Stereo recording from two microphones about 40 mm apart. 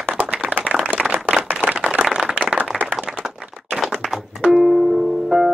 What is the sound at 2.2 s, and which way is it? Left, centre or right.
Clapping, right.